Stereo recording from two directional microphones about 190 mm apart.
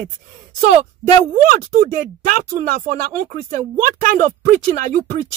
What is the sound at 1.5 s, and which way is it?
Speech, 45° right (ahead or behind).